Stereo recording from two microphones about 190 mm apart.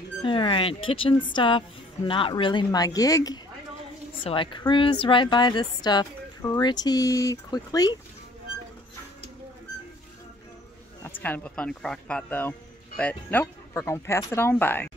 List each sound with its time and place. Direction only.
0.2 s a woman's voice: 25° left (ahead or behind)
11.1 s speech: 10° left (ahead or behind)